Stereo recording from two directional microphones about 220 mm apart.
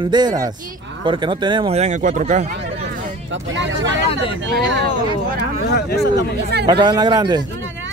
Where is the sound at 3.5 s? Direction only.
55° right (ahead or behind).